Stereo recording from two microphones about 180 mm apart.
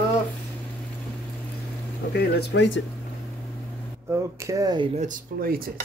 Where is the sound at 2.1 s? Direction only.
65° left (ahead or behind); by 2.8 s 80° left.